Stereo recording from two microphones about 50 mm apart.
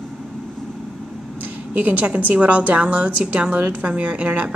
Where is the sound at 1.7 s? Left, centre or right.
Right.